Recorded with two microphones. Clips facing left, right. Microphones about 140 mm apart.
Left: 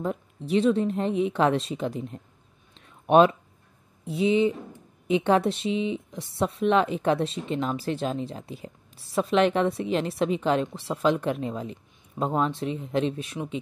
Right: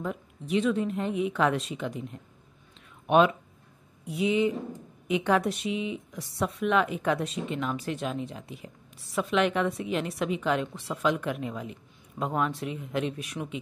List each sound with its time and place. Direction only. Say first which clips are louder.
0.0 s a woman's voice: left 4 dB; 35° left (ahead or behind)
3.1 s a woman's voice: left 4 dB; 35° left (ahead or behind)